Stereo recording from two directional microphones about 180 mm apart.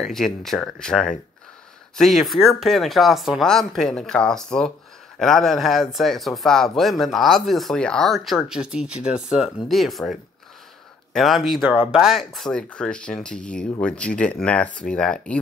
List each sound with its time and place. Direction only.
0.0 s speech: centre (ahead or behind)
11.1 s speech: centre (ahead or behind)